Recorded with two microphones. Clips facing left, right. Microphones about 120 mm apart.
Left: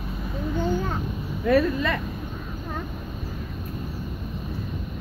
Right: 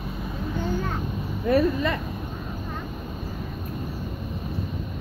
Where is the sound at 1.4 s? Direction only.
20° right (ahead or behind).